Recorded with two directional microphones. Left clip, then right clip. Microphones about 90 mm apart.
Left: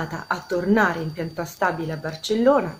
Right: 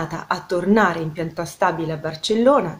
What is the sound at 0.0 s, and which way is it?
A woman's voice, 10° right (ahead or behind).